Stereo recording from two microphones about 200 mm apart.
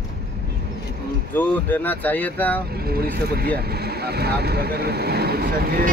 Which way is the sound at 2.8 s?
50° right (ahead or behind).